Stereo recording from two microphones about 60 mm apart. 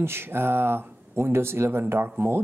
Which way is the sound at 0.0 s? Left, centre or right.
Right.